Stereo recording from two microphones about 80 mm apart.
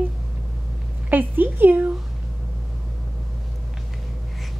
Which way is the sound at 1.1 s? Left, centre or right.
Right.